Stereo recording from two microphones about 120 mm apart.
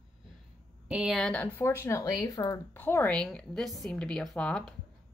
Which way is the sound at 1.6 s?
20° left (ahead or behind).